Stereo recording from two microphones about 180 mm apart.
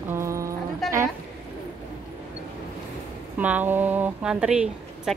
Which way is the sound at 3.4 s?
10° right (ahead or behind).